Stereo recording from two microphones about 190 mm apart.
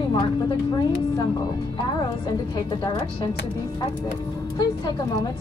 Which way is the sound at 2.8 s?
20° left (ahead or behind).